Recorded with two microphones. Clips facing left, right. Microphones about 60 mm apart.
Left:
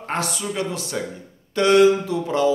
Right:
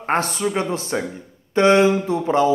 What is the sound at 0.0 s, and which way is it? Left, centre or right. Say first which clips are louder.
Speech: right 5 dB; right.